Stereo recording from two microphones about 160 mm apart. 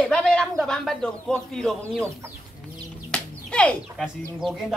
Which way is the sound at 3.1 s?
5° left (ahead or behind).